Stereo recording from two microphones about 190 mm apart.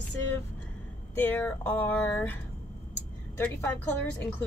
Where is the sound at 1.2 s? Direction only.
10° left (ahead or behind).